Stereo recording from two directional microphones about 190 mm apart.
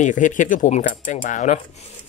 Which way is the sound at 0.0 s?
40° left (ahead or behind).